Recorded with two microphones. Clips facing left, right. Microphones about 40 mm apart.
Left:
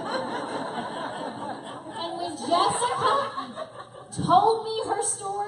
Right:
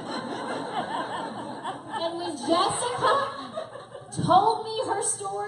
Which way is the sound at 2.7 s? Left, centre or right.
Left.